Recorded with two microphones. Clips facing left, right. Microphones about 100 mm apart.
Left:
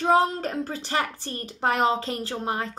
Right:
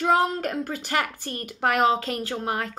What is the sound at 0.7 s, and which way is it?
A woman's voice, 30° left (ahead or behind).